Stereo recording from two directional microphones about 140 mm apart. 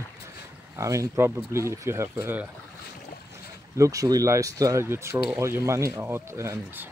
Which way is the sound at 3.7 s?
25° right (ahead or behind).